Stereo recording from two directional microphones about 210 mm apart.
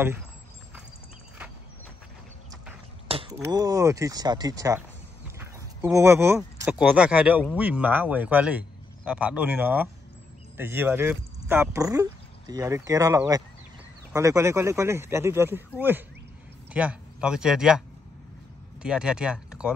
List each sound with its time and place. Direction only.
3.1 s a sound: 25° right (ahead or behind)
3.4 s speech: 15° right (ahead or behind)
16.7 s speech: 5° right (ahead or behind)